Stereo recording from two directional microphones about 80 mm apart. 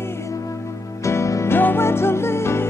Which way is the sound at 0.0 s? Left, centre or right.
Left.